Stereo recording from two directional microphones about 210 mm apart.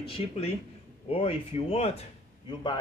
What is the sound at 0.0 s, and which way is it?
A man's voice, 25° left (ahead or behind).